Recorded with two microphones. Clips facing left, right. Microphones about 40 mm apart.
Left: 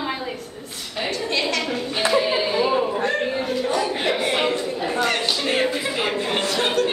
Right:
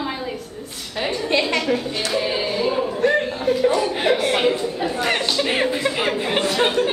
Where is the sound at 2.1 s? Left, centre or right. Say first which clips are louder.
Left 2 dB; centre.